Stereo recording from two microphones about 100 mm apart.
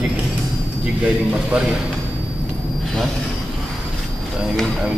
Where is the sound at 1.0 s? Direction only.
10° right (ahead or behind).